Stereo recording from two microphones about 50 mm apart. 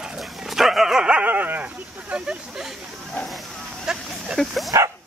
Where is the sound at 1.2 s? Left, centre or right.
Right.